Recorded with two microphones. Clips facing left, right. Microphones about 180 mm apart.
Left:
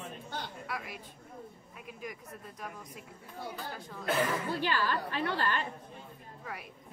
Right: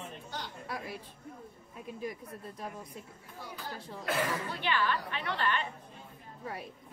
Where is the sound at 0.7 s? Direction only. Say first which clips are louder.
Right 1 dB; 35° right (ahead or behind).